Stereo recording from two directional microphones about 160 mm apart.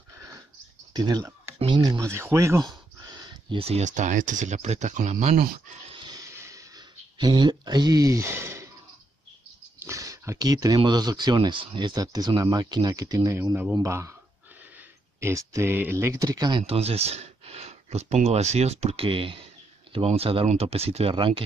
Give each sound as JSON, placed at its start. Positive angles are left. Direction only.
{"t": 0.9, "sound": "speech", "side_deg": -25}
{"t": 5.9, "sound": "a sound", "side_deg": -25}
{"t": 9.8, "sound": "speech", "side_deg": -20}
{"t": 15.1, "sound": "speech", "side_deg": -15}
{"t": 16.6, "sound": "speech", "side_deg": -40}